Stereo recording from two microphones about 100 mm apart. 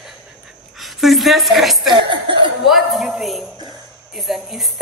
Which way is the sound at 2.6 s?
Centre (ahead or behind).